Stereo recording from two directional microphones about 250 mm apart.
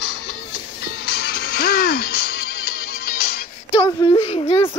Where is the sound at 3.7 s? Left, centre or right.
Centre.